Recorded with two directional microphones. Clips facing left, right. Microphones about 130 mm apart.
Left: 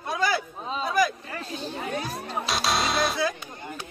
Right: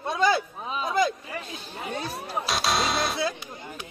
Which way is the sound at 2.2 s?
Centre (ahead or behind).